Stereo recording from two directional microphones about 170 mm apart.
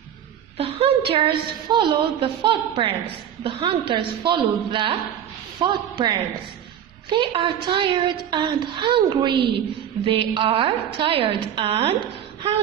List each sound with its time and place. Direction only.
0.6 s a woman's voice: 35° right (ahead or behind)